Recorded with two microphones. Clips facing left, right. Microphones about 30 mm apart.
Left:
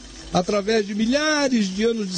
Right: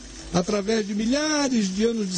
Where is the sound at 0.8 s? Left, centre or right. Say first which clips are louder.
Left 3 dB; left.